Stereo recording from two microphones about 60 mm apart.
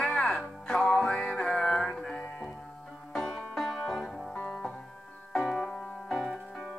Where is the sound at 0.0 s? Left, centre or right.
Centre.